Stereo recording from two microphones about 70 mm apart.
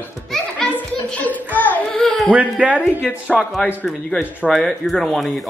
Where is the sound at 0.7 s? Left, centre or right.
Left.